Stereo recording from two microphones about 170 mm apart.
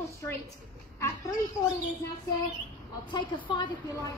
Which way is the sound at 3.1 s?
30° left (ahead or behind).